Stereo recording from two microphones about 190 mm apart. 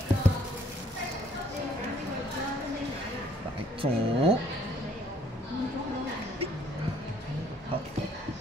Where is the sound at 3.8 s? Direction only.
30° right (ahead or behind).